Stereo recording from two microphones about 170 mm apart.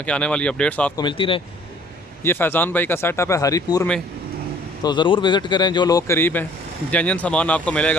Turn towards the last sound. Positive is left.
turn(degrees=5)  # may be behind; listen again after turning